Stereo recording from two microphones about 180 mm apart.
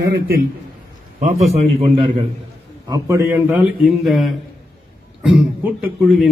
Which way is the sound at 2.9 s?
15° right (ahead or behind).